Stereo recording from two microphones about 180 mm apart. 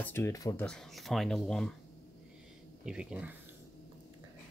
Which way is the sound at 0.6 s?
Centre (ahead or behind).